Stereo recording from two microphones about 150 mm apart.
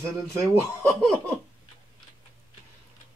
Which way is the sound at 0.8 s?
5° left (ahead or behind).